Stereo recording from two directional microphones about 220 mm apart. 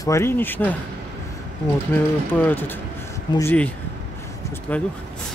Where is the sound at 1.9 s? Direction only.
10° left (ahead or behind).